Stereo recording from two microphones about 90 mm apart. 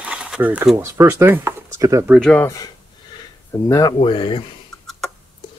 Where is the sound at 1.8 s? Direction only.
40° right (ahead or behind).